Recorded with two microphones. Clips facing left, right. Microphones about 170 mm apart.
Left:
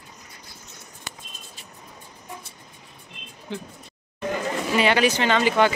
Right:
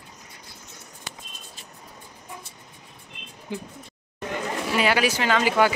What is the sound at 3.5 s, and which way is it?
Speech, 10° right (ahead or behind).